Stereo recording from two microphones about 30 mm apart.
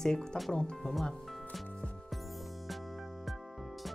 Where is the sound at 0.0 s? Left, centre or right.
Left.